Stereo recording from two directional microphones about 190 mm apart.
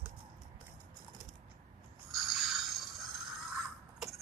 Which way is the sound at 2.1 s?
Centre (ahead or behind).